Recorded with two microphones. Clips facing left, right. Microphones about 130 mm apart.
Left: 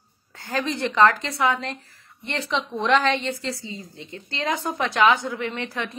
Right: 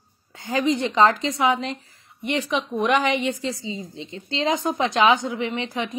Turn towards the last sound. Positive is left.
turn(degrees=-15)  # may be behind; listen again after turning